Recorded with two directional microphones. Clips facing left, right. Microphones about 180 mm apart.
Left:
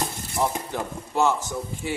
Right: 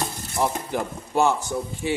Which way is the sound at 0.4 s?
10° right (ahead or behind).